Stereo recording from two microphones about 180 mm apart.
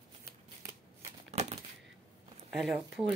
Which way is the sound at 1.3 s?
40° right (ahead or behind).